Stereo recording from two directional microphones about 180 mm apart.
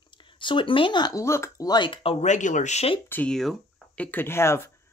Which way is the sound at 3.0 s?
10° left (ahead or behind).